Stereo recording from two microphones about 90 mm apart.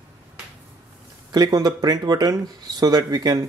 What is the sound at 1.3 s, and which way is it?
Speech, 50° right (ahead or behind).